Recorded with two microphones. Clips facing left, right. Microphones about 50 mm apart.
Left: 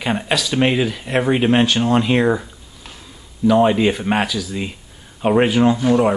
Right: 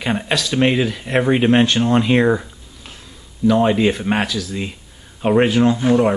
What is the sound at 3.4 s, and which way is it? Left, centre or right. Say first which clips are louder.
Speech: left 1 dB; centre.